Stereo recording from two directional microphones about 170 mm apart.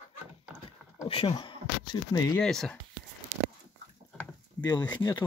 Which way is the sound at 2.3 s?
5° left (ahead or behind).